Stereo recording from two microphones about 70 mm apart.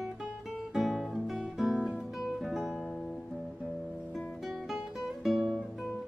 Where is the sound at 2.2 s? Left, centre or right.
Centre.